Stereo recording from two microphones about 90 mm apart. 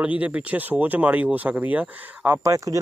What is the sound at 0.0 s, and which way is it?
Speech, 15° right (ahead or behind).